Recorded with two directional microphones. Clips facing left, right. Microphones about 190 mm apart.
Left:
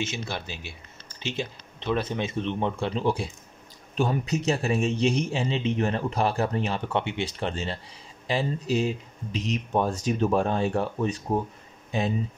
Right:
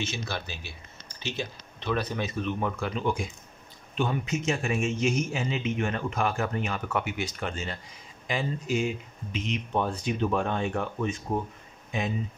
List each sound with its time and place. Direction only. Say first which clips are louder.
0.0 s a man's voice: left 2 dB; 20° left (ahead or behind)